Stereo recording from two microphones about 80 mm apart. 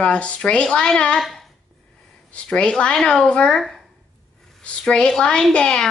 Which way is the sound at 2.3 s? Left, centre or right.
Centre.